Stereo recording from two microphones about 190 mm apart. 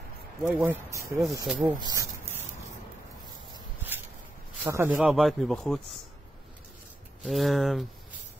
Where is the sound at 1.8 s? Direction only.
20° right (ahead or behind).